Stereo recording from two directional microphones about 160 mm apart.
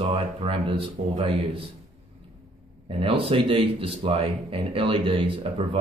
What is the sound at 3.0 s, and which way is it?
Speech, 35° right (ahead or behind).